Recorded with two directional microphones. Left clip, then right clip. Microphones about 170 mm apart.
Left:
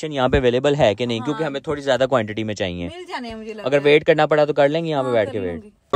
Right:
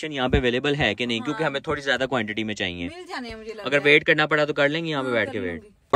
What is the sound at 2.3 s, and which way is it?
Speech, 40° left (ahead or behind).